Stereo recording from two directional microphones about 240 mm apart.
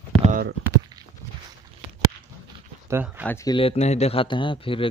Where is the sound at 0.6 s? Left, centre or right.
Centre.